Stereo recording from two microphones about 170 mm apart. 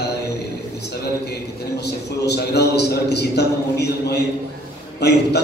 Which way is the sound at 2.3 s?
75° left (ahead or behind).